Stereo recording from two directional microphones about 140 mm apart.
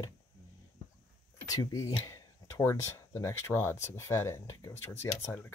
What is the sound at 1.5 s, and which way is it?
Speech, 25° left (ahead or behind).